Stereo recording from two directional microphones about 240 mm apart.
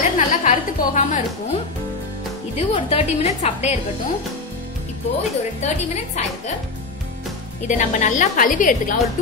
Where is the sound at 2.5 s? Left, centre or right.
Left.